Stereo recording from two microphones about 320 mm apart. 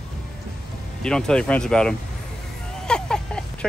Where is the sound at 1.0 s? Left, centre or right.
Centre.